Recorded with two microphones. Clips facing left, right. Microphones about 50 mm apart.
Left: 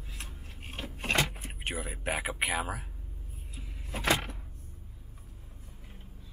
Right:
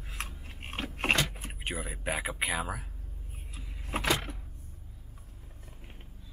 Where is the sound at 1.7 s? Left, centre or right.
Centre.